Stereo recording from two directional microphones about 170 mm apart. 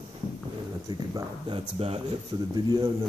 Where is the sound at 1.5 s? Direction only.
35° right (ahead or behind).